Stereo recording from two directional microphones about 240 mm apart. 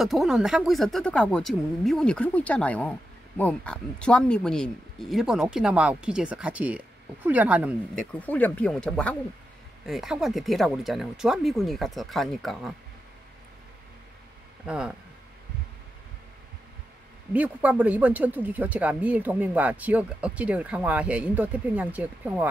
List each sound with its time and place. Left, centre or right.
0.0 s speech: centre
8.1 s speech: centre
14.7 s speech: centre
17.3 s speech: centre